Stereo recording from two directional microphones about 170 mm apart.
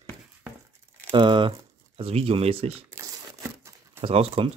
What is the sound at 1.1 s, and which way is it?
Speech, 30° right (ahead or behind).